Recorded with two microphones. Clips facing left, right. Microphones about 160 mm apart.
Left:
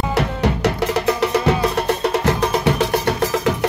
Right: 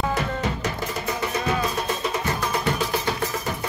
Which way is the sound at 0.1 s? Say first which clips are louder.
Left 6 dB; 70° left (ahead or behind).